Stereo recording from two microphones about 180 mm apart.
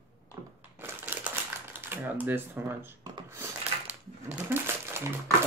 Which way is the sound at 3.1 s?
15° right (ahead or behind).